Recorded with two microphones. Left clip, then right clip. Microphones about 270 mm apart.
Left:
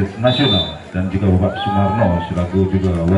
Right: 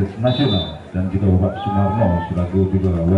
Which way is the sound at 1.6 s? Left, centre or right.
Centre.